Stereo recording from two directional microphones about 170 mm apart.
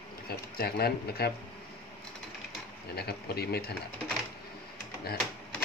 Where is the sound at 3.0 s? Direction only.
70° left (ahead or behind).